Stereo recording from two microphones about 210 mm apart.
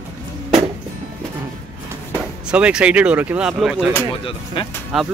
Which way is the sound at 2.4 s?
5° right (ahead or behind).